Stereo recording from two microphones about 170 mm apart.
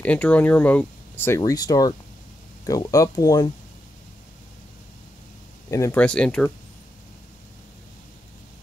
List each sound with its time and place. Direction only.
0.0 s speech: 10° left (ahead or behind)
5.7 s speech: 15° left (ahead or behind)